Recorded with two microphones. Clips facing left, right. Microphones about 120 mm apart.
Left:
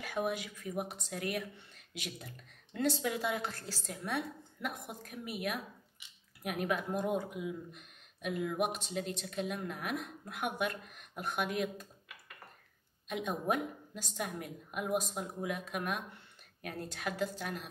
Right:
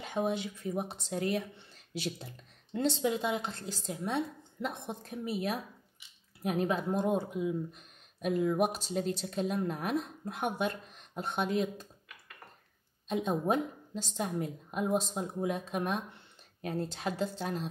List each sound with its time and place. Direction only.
0.0 s a woman's voice: 25° right (ahead or behind)
13.1 s a woman's voice: 30° right (ahead or behind)